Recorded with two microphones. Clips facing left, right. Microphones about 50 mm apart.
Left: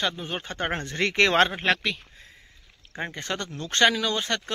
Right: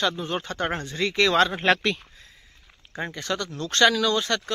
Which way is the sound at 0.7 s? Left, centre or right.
Left.